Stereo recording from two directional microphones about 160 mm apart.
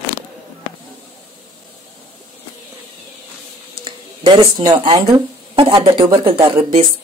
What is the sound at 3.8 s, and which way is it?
Speech, 30° right (ahead or behind).